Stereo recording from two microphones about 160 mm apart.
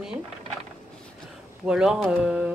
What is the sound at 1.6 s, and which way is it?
Speech, 5° right (ahead or behind).